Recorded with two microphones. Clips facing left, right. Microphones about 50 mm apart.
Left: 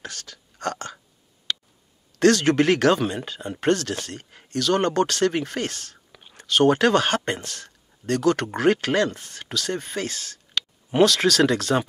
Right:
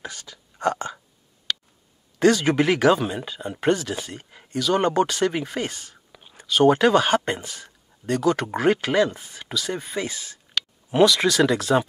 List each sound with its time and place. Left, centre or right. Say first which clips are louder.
0.0 s speech: right 1 dB; centre
2.1 s speech: left 1 dB; centre